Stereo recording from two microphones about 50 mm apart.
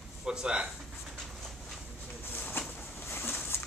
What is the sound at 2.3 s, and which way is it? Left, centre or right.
Pigeon, left.